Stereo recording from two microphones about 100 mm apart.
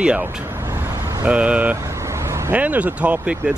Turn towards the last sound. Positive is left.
turn(degrees=-10)  # may be behind; listen again after turning